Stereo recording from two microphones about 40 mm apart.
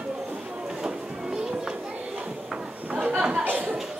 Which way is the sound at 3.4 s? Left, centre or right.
Right.